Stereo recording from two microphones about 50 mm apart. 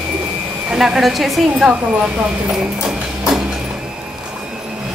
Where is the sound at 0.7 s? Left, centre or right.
Centre.